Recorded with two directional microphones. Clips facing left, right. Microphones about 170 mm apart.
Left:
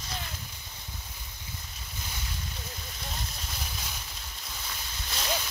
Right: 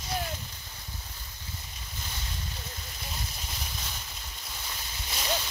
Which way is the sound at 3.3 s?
Centre (ahead or behind).